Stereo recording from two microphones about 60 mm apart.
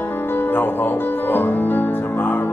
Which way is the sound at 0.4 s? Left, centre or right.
Left.